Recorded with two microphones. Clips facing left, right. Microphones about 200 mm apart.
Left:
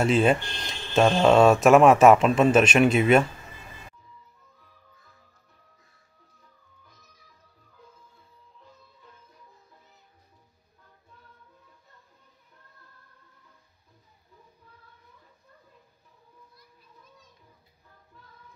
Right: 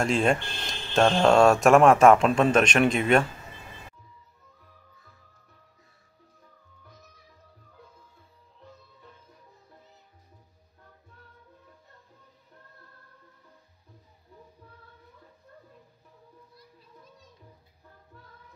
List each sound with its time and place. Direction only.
0.0 s speech: 5° left (ahead or behind)
16.5 s children playing: 35° right (ahead or behind)